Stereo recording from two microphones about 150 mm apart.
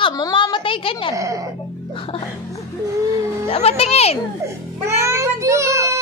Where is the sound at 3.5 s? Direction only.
40° left (ahead or behind).